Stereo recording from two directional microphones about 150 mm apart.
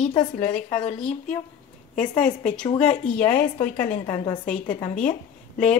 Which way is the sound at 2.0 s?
60° left (ahead or behind).